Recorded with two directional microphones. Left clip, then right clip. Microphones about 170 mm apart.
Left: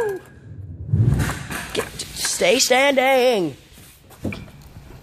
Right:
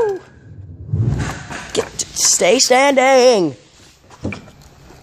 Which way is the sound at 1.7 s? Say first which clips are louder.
Right 8 dB; 40° right (ahead or behind).